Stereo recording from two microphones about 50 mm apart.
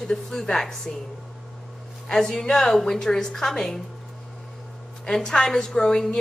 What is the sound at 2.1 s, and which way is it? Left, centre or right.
Speech, centre.